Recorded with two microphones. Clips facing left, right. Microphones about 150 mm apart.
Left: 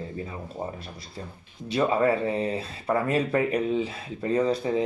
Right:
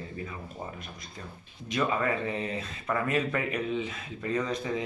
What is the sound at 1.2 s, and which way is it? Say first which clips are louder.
Speech: left 5 dB; 30° left (ahead or behind).